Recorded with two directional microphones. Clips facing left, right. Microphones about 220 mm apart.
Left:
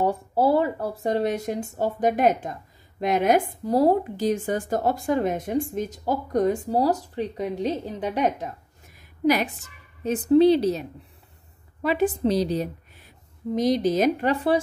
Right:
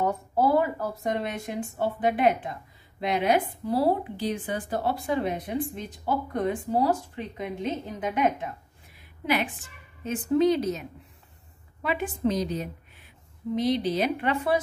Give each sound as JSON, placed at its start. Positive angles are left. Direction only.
{"t": 0.0, "sound": "a woman's voice", "side_deg": 30}